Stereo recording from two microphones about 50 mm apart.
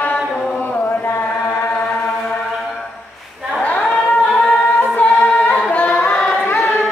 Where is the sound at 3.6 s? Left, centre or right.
Left.